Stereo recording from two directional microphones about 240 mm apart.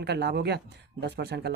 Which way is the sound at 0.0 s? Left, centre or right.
Right.